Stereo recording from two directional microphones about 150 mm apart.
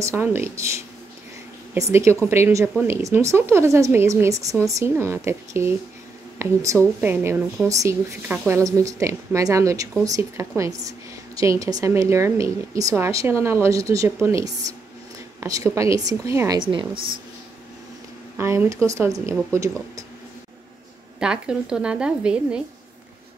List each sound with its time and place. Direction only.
0.0 s a woman's voice: 15° right (ahead or behind)
15.4 s a woman's voice: 20° right (ahead or behind)
16.5 s a woman's voice: 35° right (ahead or behind)
18.4 s a woman's voice: 20° right (ahead or behind)
21.2 s speech: 5° right (ahead or behind)